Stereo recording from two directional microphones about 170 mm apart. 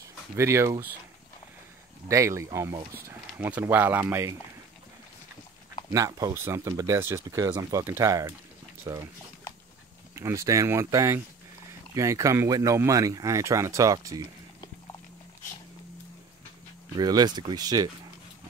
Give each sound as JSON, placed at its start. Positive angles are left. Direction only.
{"t": 0.4, "sound": "speech", "side_deg": -15}
{"t": 2.0, "sound": "speech", "side_deg": -15}
{"t": 5.9, "sound": "speech", "side_deg": -20}
{"t": 10.1, "sound": "speech", "side_deg": -15}
{"t": 16.9, "sound": "speech", "side_deg": -25}